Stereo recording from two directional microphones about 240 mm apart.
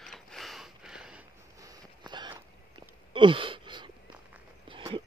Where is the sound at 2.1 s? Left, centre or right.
Centre.